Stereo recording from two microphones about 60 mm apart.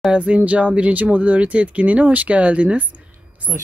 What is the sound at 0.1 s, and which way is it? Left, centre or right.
Speech, centre.